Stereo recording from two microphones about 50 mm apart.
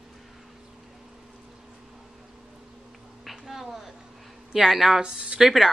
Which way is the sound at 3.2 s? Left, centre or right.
Centre.